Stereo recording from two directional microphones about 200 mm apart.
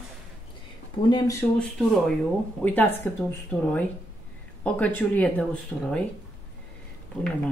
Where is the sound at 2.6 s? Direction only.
10° left (ahead or behind).